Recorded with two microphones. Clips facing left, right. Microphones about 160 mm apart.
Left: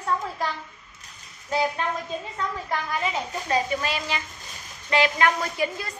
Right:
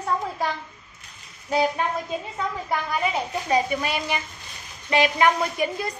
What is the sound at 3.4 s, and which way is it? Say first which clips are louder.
A woman's voice: right 2 dB; 15° right (ahead or behind).